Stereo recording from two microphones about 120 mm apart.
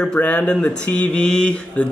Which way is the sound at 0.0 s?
10° left (ahead or behind).